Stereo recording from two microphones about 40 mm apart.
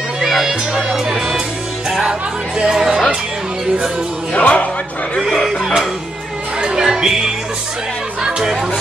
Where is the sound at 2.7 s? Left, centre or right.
Centre.